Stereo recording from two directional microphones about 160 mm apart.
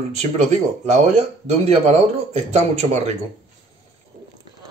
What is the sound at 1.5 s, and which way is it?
A man's voice, 40° right (ahead or behind).